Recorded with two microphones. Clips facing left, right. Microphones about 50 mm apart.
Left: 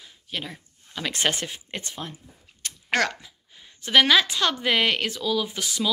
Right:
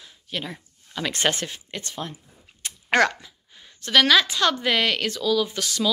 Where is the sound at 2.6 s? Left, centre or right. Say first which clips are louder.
Right 4 dB; centre.